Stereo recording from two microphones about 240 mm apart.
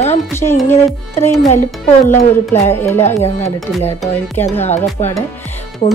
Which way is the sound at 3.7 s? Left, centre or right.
Centre.